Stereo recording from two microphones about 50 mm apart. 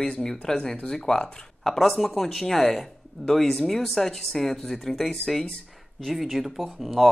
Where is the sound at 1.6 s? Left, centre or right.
Centre.